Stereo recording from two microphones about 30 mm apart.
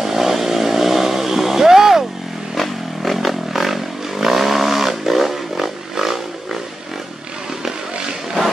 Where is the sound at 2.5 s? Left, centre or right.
Centre.